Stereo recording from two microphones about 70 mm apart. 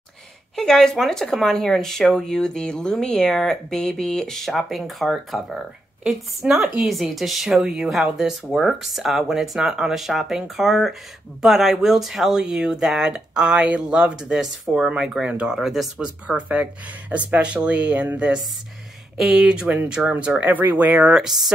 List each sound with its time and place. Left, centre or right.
0.6 s speech: centre
16.0 s speech: centre
19.1 s speech: centre; by 21.2 s right
21.2 s speech: centre